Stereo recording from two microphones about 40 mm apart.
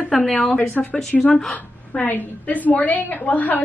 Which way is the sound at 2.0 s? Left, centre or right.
Left.